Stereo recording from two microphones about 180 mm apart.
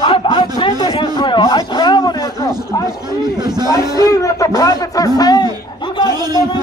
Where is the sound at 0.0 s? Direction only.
30° left (ahead or behind).